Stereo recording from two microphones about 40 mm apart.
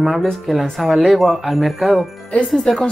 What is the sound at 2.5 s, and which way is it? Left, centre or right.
Speech, centre.